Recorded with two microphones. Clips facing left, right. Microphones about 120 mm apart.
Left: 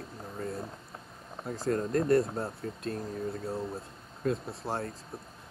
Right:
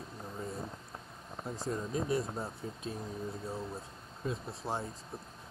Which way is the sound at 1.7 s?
65° left (ahead or behind).